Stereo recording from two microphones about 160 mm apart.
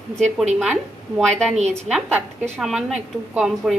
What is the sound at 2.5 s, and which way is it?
A woman's voice, 5° right (ahead or behind).